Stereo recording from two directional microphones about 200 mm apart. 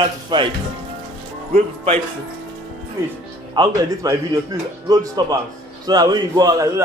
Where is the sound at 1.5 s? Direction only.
30° right (ahead or behind).